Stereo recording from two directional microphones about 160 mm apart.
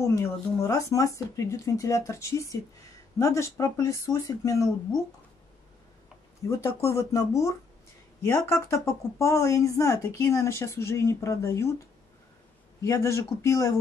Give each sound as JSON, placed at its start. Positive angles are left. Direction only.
{"t": 0.0, "sound": "speech", "side_deg": 20}
{"t": 6.4, "sound": "speech", "side_deg": 20}
{"t": 12.8, "sound": "speech", "side_deg": 20}